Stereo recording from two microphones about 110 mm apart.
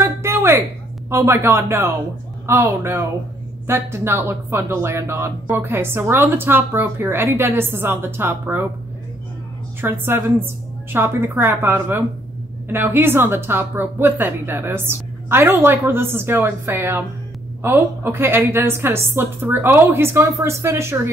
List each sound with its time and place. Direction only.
0.0 s a sound: 20° right (ahead or behind)
1.1 s speech: 25° right (ahead or behind)
9.8 s speech: 20° right (ahead or behind)